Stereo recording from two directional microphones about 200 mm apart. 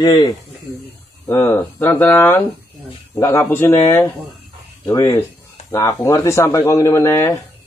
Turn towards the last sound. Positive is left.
turn(degrees=15)  # may be behind; listen again after turning